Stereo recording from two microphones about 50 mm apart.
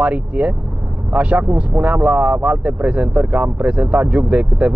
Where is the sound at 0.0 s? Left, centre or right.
Right.